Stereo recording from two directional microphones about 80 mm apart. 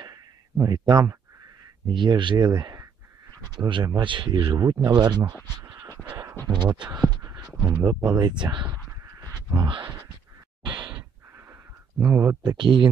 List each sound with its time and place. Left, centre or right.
0.0 s a sound: right
1.9 s speech: right
3.5 s speech: right
4.6 s speech: right
5.6 s a sound: right
6.4 s speech: right
7.8 s speech: right
8.2 s speech: right
9.0 s duck: right
10.6 s a sound: right
12.2 s speech: right
12.5 s speech: right